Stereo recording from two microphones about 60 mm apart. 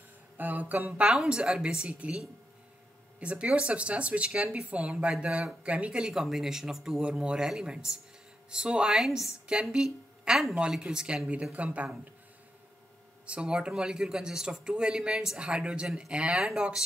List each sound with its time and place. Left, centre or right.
0.4 s a sound: right
1.0 s speech: centre
6.1 s speech: centre; by 12.0 s right
13.3 s speech: centre